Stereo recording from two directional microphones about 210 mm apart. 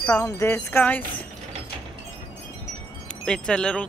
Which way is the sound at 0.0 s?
15° left (ahead or behind).